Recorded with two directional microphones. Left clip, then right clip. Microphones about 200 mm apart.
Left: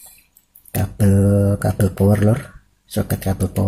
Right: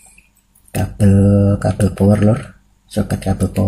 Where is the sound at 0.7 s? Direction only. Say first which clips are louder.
Right 3 dB; 25° left (ahead or behind).